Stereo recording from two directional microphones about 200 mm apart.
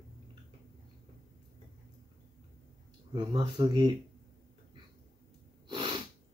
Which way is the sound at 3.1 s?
25° right (ahead or behind).